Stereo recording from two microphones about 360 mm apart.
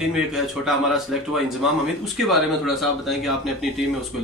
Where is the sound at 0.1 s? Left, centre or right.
Centre.